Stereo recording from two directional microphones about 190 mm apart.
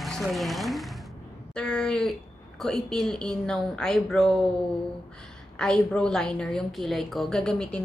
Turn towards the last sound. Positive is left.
turn(degrees=5)  # may be behind; listen again after turning